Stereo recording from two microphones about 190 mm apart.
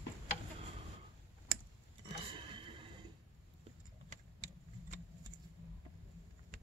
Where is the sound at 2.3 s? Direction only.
25° right (ahead or behind).